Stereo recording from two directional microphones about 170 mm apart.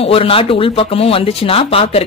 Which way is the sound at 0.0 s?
35° left (ahead or behind).